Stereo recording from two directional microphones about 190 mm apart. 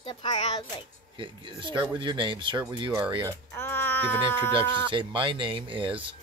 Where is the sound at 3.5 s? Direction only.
10° left (ahead or behind).